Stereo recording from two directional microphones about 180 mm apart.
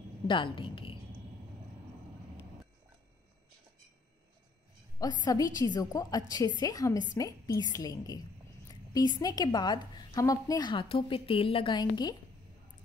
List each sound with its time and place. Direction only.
0.3 s a woman's voice: 30° left (ahead or behind)
4.9 s a woman's voice: 20° left (ahead or behind)